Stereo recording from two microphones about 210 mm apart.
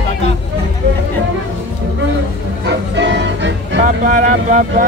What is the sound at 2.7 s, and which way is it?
Music, 60° right (ahead or behind).